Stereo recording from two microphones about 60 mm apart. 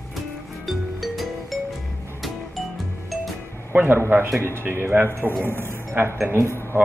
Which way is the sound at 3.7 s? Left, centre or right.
Right.